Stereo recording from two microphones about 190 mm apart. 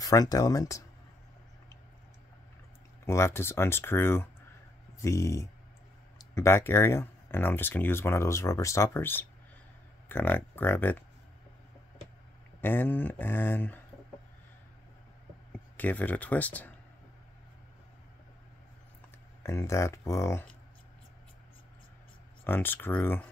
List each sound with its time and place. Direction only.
0.0 s speech: 20° left (ahead or behind)
3.1 s speech: 15° left (ahead or behind)
12.5 s speech: 10° left (ahead or behind)
15.8 s speech: 10° left (ahead or behind)
19.4 s speech: 15° left (ahead or behind)
22.4 s speech: 10° left (ahead or behind)